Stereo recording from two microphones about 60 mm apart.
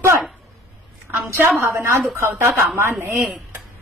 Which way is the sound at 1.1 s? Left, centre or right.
Right.